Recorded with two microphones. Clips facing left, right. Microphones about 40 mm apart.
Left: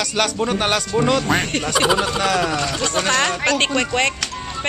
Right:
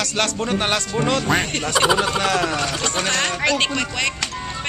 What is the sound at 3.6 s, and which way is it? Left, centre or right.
Speech, left.